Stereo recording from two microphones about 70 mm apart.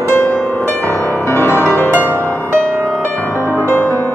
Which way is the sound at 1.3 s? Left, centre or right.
Left.